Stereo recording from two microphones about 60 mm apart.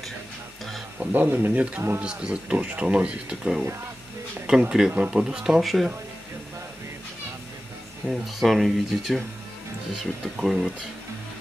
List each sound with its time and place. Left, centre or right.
0.9 s speech: right
1.3 s speech: right
2.0 s speech: right
2.5 s speech: right
2.9 s speech: centre
5.6 s speech: centre
8.1 s speech: centre